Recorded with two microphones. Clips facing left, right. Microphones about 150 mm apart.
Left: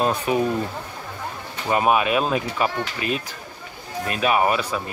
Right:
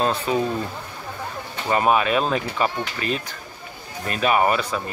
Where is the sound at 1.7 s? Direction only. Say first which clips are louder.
Even; 10° left (ahead or behind).